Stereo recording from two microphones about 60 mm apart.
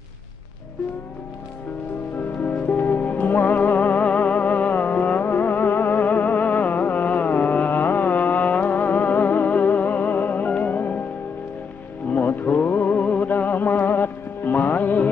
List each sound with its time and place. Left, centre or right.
2.8 s music: left
6.6 s carnatic music: left
7.7 s music: left
12.2 s music: left